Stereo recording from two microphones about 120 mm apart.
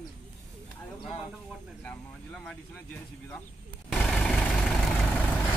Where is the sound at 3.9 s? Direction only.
5° left (ahead or behind).